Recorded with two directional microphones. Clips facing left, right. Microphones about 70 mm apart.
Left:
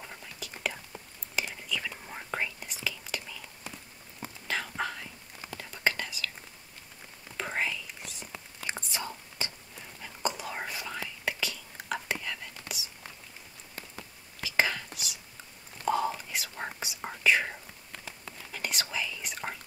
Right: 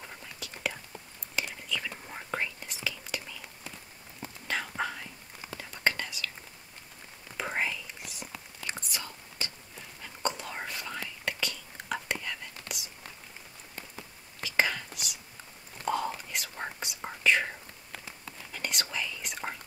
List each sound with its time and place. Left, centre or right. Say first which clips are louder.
0.0 s whispering: even; centre
4.5 s whispering: even; centre
7.3 s whispering: even; centre
8.3 s whispering: left 3 dB; left
10.0 s whispering: even; centre
14.4 s whispering: even; centre